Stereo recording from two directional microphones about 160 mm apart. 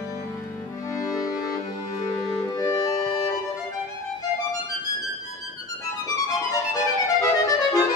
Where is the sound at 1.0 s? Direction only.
20° left (ahead or behind).